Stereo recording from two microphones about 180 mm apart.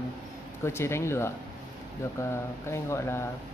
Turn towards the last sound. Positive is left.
turn(degrees=15)  # may be behind; listen again after turning